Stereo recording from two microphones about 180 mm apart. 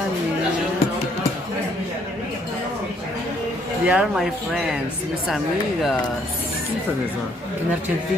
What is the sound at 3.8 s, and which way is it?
Speech, 5° right (ahead or behind).